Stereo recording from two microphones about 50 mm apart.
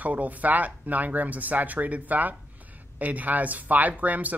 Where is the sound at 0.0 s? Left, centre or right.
Right.